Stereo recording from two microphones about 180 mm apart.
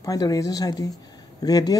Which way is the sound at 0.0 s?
20° left (ahead or behind).